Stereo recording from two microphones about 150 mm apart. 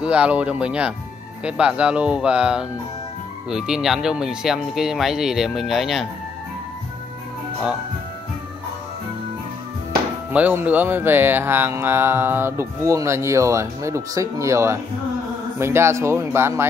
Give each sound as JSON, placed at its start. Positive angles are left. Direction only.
{"t": 0.0, "sound": "mantra", "side_deg": -10}
{"t": 3.4, "sound": "speech", "side_deg": -5}
{"t": 10.3, "sound": "mantra", "side_deg": -10}